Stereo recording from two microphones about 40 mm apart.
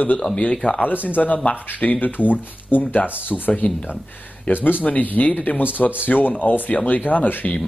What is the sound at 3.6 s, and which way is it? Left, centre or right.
Speech, left.